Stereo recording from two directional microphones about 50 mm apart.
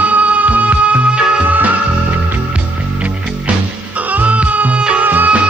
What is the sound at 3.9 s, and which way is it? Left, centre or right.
Music, right.